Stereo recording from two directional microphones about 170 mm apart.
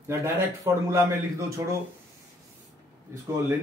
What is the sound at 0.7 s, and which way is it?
Speech, 20° right (ahead or behind).